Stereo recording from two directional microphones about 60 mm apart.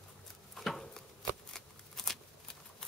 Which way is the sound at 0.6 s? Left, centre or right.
Centre.